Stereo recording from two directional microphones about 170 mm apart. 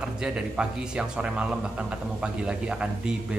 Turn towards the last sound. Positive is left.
turn(degrees=-5)  # may be behind; listen again after turning